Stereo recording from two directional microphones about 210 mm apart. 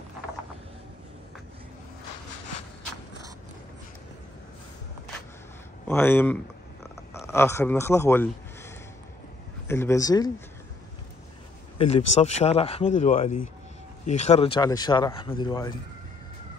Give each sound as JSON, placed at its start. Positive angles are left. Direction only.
{"t": 5.9, "sound": "speech", "side_deg": 10}
{"t": 11.8, "sound": "speech", "side_deg": 30}